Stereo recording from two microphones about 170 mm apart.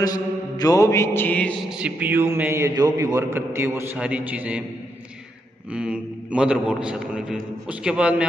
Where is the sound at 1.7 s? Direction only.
5° right (ahead or behind).